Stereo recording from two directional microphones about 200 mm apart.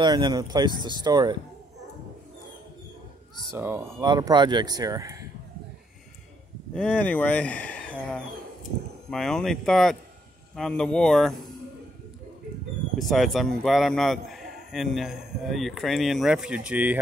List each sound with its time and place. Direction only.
0.0 s speech: 20° right (ahead or behind)
3.5 s speech: 10° right (ahead or behind)
6.7 s a man's voice: 5° left (ahead or behind)
12.9 s a man's voice: centre (ahead or behind)